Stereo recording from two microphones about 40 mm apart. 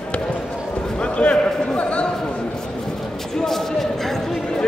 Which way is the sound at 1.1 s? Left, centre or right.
Left.